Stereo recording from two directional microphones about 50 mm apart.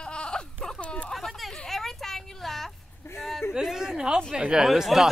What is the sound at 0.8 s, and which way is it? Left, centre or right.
Speech, left.